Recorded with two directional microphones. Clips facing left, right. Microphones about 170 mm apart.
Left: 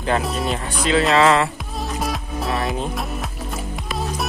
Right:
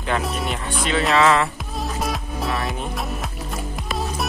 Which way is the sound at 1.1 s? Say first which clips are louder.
Even; 30° left (ahead or behind).